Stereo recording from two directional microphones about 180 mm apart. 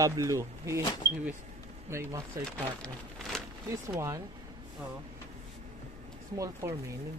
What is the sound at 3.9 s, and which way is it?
Speech, 15° right (ahead or behind).